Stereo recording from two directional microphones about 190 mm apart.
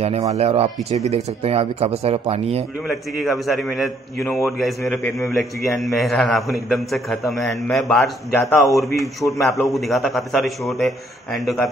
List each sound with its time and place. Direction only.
0.0 s speech: 35° right (ahead or behind)
3.2 s a man's voice: centre (ahead or behind)